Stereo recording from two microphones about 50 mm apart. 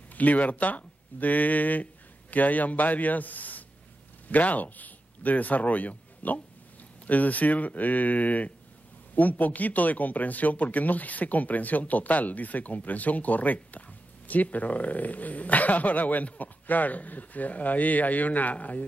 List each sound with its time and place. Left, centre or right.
0.1 s speech: left